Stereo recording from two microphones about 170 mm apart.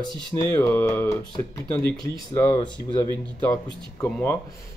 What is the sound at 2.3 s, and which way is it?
Speech, 25° left (ahead or behind).